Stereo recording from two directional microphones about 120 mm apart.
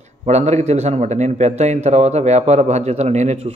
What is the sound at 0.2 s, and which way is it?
A man's voice, 70° right (ahead or behind).